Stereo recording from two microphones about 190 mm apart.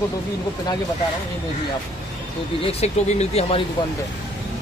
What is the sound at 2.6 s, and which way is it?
Speech, 35° left (ahead or behind).